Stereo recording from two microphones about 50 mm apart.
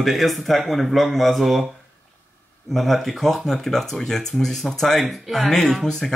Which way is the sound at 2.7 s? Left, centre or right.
Centre.